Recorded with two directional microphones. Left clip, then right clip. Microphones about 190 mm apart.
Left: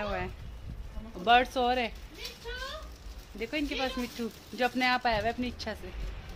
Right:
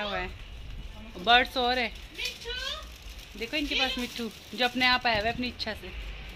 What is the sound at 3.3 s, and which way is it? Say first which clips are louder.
Speech: right 4 dB; centre (ahead or behind).